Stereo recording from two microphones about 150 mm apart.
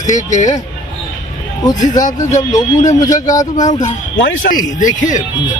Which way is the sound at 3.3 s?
25° left (ahead or behind).